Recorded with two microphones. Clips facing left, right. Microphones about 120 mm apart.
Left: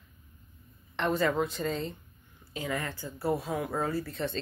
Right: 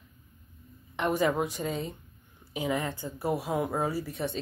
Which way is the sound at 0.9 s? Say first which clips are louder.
Right 1 dB; 10° right (ahead or behind).